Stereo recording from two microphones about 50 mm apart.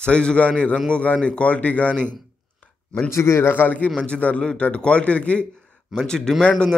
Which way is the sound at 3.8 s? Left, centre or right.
Left.